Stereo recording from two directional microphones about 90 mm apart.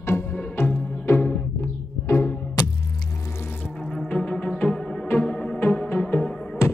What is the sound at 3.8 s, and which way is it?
Music, 15° left (ahead or behind).